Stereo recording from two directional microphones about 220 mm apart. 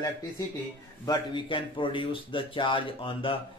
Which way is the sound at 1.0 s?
20° left (ahead or behind).